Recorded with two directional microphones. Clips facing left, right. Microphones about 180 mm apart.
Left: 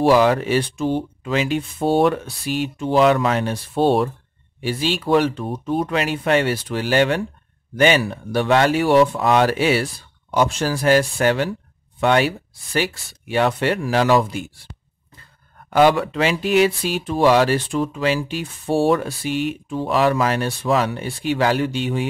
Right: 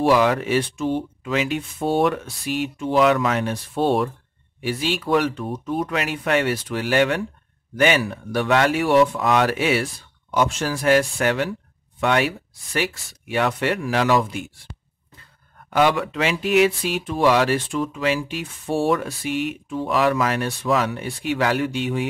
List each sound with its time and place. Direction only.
0.0 s speech: 30° left (ahead or behind)
15.7 s speech: 35° left (ahead or behind)